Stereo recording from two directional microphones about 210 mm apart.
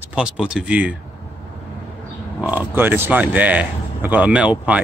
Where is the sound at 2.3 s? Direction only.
5° right (ahead or behind).